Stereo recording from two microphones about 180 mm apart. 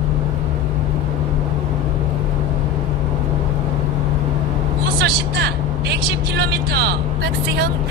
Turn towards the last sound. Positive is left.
turn(degrees=-65)  # may be behind; listen again after turning